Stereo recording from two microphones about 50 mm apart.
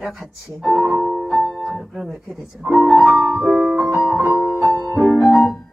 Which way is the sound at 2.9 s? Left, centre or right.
Centre.